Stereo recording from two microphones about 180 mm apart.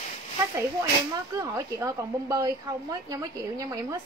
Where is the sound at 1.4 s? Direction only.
15° right (ahead or behind).